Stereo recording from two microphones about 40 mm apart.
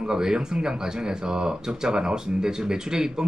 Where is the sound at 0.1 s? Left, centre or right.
Centre.